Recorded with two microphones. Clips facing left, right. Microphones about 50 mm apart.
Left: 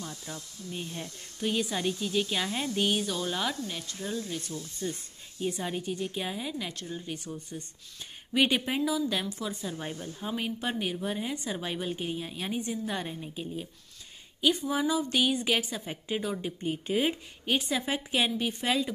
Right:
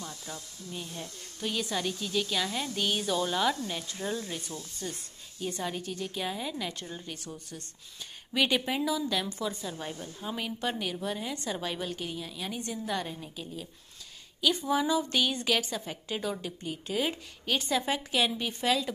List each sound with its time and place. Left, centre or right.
0.0 s hiss: centre
0.7 s a woman's voice: centre
3.0 s speech: centre
5.4 s a woman's voice: centre
8.3 s a woman's voice: centre; by 12.5 s left
12.5 s a woman's voice: centre
14.5 s a woman's voice: centre
16.6 s speech: left
17.1 s a woman's voice: centre